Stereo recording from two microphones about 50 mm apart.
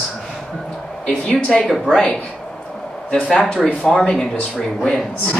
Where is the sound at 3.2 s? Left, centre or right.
Centre.